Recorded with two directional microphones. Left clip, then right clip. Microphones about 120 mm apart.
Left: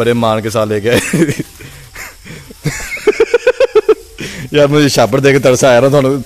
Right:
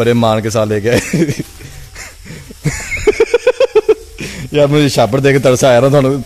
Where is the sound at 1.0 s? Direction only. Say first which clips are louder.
Left 2 dB; 25° left (ahead or behind).